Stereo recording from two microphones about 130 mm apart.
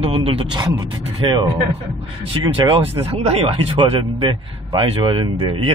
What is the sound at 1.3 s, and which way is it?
Speech, 35° right (ahead or behind).